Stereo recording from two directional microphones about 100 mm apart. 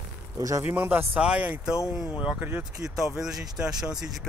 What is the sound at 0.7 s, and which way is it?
Speech, 20° right (ahead or behind).